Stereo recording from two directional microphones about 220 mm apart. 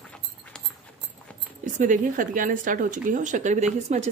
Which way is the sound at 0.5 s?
5° left (ahead or behind).